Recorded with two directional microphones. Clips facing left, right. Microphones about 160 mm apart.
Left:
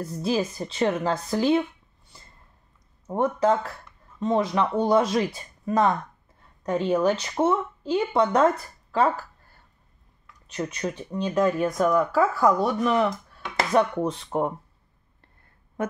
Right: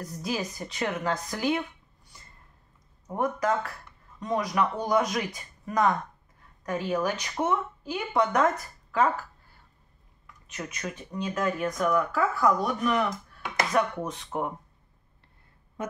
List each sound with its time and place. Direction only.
0.0 s speech: 25° left (ahead or behind)
3.1 s speech: 25° left (ahead or behind)
7.0 s speech: 10° right (ahead or behind)
7.3 s speech: 25° left (ahead or behind)
10.5 s speech: 30° left (ahead or behind)